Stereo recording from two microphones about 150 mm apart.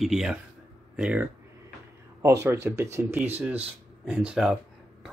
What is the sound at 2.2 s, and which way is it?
Speech, 20° right (ahead or behind).